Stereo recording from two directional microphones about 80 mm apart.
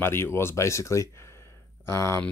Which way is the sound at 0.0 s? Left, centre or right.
Left.